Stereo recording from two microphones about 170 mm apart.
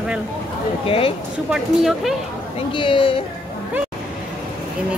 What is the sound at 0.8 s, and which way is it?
Speech, 35° left (ahead or behind).